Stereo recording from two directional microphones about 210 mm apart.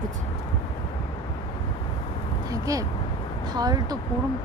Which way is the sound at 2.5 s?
15° right (ahead or behind).